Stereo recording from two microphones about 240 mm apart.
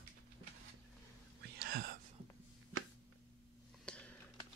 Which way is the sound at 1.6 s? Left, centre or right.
Right.